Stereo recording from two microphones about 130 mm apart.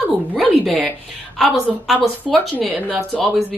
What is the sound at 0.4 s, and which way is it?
Speech, 5° left (ahead or behind).